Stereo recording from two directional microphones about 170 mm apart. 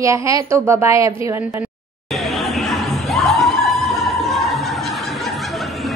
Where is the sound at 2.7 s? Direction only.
Centre (ahead or behind).